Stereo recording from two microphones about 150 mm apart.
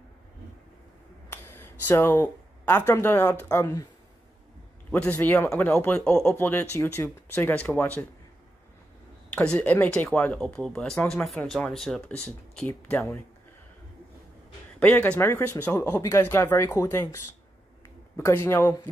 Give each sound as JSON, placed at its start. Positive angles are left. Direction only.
{"t": 1.3, "sound": "speech", "side_deg": 15}
{"t": 4.9, "sound": "speech", "side_deg": 10}
{"t": 9.3, "sound": "speech", "side_deg": 5}
{"t": 14.8, "sound": "speech", "side_deg": 10}